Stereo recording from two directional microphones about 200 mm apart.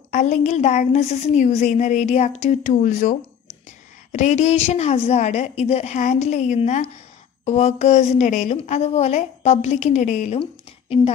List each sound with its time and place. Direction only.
0.1 s a woman's voice: 35° left (ahead or behind)